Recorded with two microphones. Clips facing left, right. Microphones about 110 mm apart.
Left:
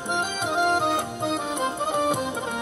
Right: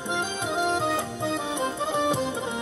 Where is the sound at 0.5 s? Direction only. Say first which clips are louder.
Left 3 dB; 60° left (ahead or behind).